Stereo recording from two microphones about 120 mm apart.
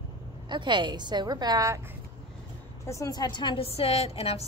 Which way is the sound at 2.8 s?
25° left (ahead or behind).